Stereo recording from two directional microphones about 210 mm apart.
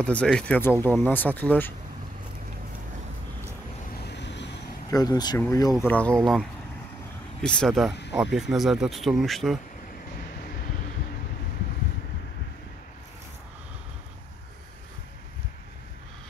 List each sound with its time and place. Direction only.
0.0 s speech: 5° left (ahead or behind)
4.0 s vehicle: 55° left (ahead or behind)
4.9 s speech: 20° left (ahead or behind); by 6.4 s centre (ahead or behind)
7.4 s speech: 5° left (ahead or behind)